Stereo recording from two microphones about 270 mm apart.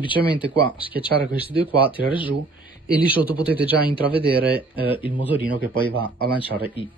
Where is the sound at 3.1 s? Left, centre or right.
Centre.